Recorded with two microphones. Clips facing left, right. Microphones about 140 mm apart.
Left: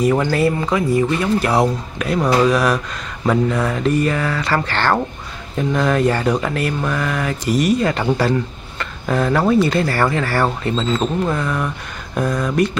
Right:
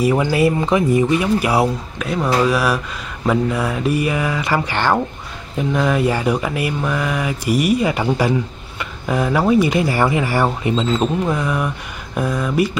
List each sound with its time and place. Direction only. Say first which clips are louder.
0.0 s speech: even; 10° right (ahead or behind)
2.0 s speech: left 2 dB; centre (ahead or behind)